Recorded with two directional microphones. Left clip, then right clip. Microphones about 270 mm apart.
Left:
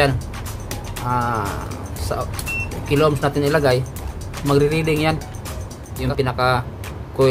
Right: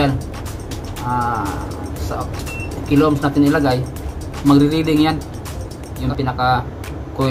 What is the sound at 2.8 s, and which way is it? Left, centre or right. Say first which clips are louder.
Speech: right 2 dB; left.